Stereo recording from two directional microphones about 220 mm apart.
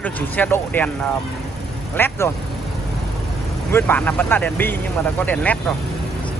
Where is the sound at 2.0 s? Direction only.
10° left (ahead or behind).